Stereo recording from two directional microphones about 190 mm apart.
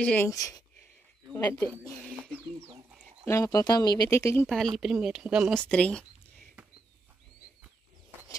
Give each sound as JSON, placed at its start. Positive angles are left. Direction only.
{"t": 0.0, "sound": "speech", "side_deg": 10}
{"t": 3.3, "sound": "speech", "side_deg": 15}
{"t": 4.7, "sound": "speech", "side_deg": 0}